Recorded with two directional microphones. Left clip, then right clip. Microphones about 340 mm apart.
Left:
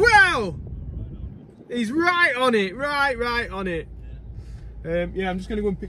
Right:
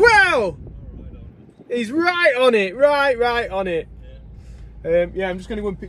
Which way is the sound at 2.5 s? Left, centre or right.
Right.